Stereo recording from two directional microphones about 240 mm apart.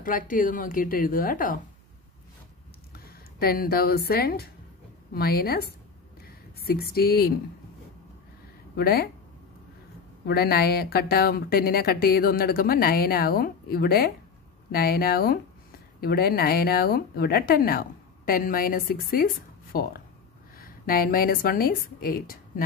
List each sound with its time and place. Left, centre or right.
0.0 s speech: left
2.9 s speech: left
8.7 s speech: left
10.2 s speech: left